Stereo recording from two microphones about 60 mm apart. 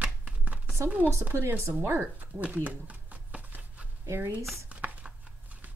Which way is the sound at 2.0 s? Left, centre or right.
Right.